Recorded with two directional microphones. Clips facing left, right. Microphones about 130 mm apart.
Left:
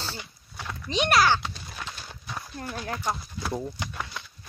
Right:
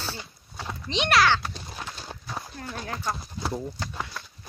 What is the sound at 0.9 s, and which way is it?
Speech, 30° right (ahead or behind).